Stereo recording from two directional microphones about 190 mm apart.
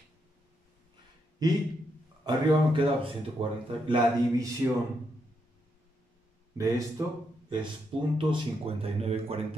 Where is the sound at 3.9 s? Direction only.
15° right (ahead or behind).